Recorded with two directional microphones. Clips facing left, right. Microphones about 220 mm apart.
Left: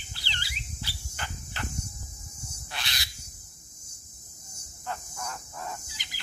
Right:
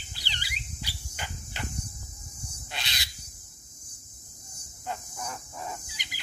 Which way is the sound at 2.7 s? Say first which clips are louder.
Even; 20° right (ahead or behind).